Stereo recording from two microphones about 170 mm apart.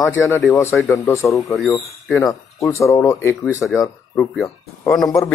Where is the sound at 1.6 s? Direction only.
Centre (ahead or behind).